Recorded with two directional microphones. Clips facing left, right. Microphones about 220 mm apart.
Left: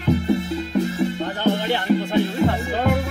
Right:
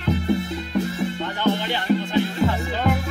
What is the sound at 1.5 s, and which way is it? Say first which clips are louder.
Music: left 4 dB; 50° left (ahead or behind).